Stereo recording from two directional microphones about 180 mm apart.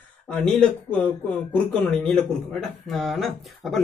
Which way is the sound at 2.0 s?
Centre (ahead or behind).